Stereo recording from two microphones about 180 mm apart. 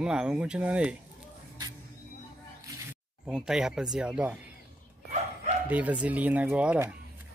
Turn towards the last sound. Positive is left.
turn(degrees=-10)  # may be behind; listen again after turning